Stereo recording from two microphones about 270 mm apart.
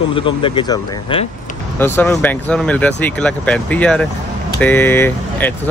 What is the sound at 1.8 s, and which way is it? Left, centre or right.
Speech, centre.